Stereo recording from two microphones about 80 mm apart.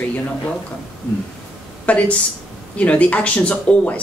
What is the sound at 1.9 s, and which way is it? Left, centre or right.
Speech, centre.